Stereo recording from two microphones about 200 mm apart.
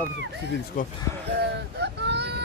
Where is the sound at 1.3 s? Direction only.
55° right (ahead or behind).